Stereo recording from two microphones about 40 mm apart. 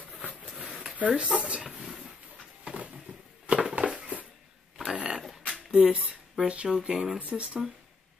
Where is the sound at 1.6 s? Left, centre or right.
Centre.